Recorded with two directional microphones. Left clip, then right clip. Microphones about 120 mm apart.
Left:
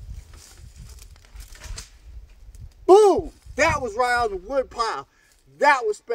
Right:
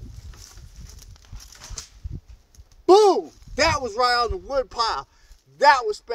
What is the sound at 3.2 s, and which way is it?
Speech, 5° left (ahead or behind).